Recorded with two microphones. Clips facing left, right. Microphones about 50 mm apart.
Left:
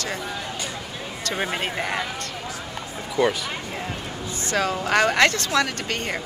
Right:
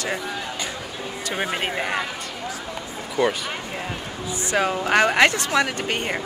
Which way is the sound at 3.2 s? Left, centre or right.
Right.